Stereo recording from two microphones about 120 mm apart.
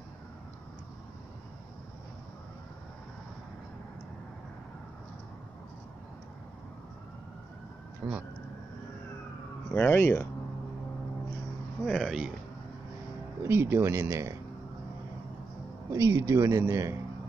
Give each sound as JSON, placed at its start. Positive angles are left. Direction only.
{"t": 8.0, "sound": "speech", "side_deg": -10}
{"t": 9.8, "sound": "speech", "side_deg": 20}
{"t": 11.8, "sound": "speech", "side_deg": 0}
{"t": 13.4, "sound": "a man's voice", "side_deg": -20}
{"t": 15.9, "sound": "a man's voice", "side_deg": -25}